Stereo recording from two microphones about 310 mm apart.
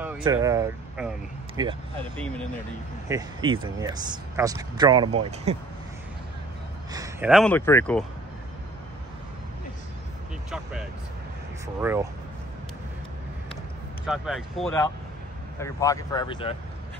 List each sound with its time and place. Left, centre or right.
0.0 s speech: centre
3.1 s speech: centre
6.9 s speech: centre
10.5 s vehicle: centre
11.6 s speech: centre
14.0 s speech: centre